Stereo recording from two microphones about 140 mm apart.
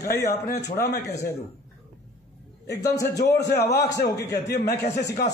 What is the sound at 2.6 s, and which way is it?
A man's voice, 25° left (ahead or behind).